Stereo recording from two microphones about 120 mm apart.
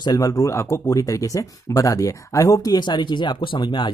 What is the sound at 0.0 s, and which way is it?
Speech, 30° left (ahead or behind).